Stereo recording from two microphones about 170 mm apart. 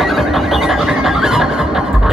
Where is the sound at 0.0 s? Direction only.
Centre (ahead or behind).